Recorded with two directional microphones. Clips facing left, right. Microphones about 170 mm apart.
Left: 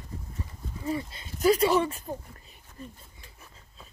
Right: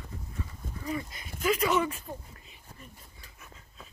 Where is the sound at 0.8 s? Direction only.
30° left (ahead or behind).